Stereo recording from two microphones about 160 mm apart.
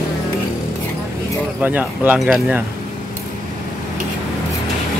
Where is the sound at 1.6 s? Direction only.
10° right (ahead or behind).